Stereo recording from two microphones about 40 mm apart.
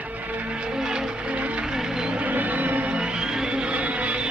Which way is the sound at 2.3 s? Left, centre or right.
Right.